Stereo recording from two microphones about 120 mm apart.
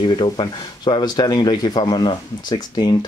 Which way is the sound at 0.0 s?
40° left (ahead or behind).